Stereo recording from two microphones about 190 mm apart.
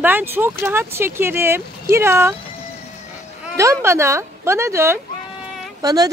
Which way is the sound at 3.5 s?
15° right (ahead or behind).